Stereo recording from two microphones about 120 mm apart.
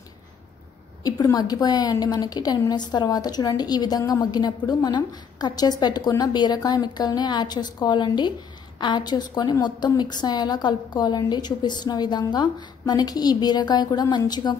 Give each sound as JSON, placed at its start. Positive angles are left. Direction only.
{"t": 1.0, "sound": "a woman's voice", "side_deg": 30}